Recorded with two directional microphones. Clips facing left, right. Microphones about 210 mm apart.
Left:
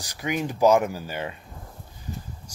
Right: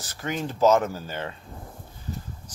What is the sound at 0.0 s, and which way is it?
Speech, 15° left (ahead or behind).